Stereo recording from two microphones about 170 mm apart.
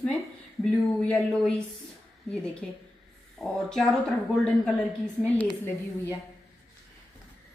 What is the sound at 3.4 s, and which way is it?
Speech, centre (ahead or behind).